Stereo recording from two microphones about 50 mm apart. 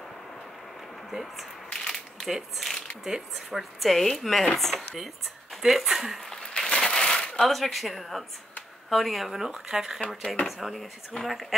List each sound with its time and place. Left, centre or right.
1.1 s speech: centre
1.7 s a sound: centre
3.0 s speech: centre
6.3 s a sound: centre
7.4 s speech: centre
9.9 s speech: centre
10.4 s speech: centre
11.1 s speech: left